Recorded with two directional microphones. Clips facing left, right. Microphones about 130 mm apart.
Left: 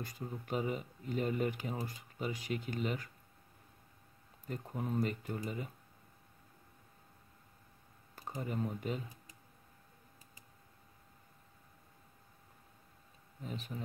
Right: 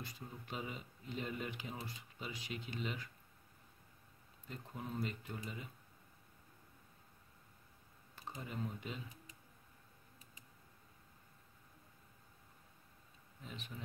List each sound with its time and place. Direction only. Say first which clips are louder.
0.0 s speech: left 7 dB; 45° left (ahead or behind)
4.5 s speech: left 7 dB; 45° left (ahead or behind)
8.2 s speech: left 6 dB; 45° left (ahead or behind)
13.4 s speech: left 7 dB; 40° left (ahead or behind)